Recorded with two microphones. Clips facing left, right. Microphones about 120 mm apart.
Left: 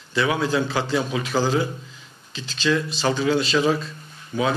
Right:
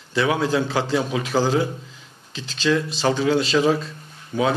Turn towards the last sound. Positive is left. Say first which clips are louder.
# right 2 dB
turn(degrees=-40)  # may be behind; listen again after turning